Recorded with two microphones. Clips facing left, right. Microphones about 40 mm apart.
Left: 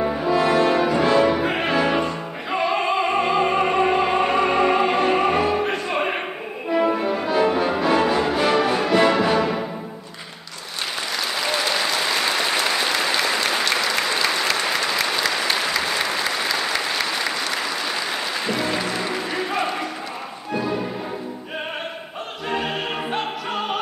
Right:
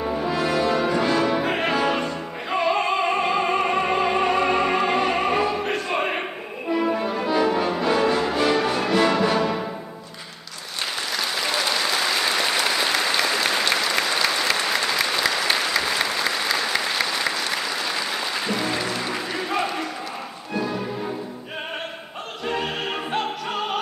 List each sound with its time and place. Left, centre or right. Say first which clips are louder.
0.2 s french horn: left 6 dB; centre
0.5 s brass instrument: left 3 dB; left
0.9 s opera: left 3 dB; centre
6.7 s music: left 3 dB; centre
11.3 s applause: left 2 dB; centre
20.5 s music: left 2 dB; centre
22.5 s opera: left 1 dB; centre